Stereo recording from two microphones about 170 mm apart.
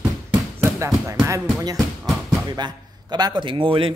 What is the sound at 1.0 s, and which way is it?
A man's voice, 20° right (ahead or behind).